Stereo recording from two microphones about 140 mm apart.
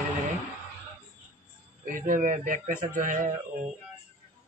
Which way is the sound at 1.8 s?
70° right (ahead or behind).